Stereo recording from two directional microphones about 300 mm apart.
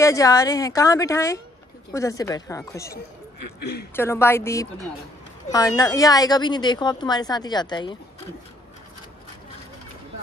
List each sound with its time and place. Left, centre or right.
0.0 s a woman's voice: centre
3.3 s a sound: left
3.9 s a woman's voice: centre